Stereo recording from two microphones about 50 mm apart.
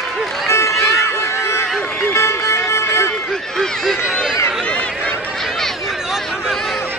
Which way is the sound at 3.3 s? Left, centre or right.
Centre.